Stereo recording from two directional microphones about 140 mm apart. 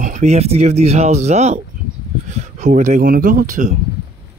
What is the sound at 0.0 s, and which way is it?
Speech, 60° right (ahead or behind).